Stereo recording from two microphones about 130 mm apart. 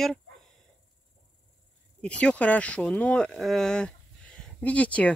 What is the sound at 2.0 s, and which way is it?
Speech, 10° left (ahead or behind).